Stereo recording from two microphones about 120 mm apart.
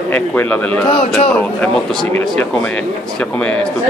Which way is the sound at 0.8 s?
45° left (ahead or behind).